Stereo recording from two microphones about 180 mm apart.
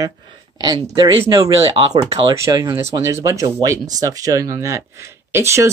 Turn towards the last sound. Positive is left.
turn(degrees=-15)  # may be behind; listen again after turning